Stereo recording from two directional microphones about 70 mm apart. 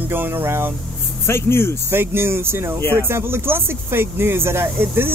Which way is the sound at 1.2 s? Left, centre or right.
Left.